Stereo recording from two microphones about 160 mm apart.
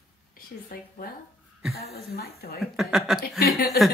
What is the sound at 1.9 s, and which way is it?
Speech, 75° left (ahead or behind).